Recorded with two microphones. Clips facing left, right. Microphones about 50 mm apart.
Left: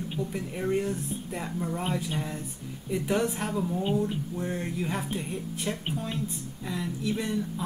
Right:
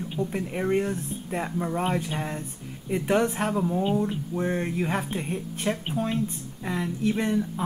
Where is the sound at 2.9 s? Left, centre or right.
Right.